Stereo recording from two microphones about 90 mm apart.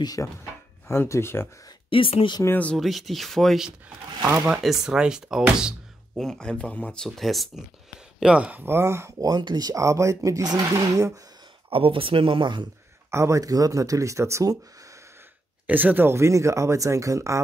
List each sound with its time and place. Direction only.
0.0 s speech: 40° left (ahead or behind)
0.8 s speech: 30° left (ahead or behind)
1.9 s speech: 85° left
2.8 s speech: centre (ahead or behind)
6.1 s speech: 5° left (ahead or behind)
7.1 s speech: centre (ahead or behind)
8.2 s speech: 10° right (ahead or behind); by 9.3 s 30° right (ahead or behind)
9.3 s speech: 55° right (ahead or behind)
11.7 s speech: 80° right; by 12.6 s 65° right (ahead or behind)
13.1 s speech: 35° right (ahead or behind)
15.6 s speech: 20° right (ahead or behind); by 17.4 s 35° right (ahead or behind)